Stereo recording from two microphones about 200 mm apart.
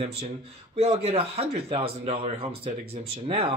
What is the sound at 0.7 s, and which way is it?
Speech, 30° right (ahead or behind).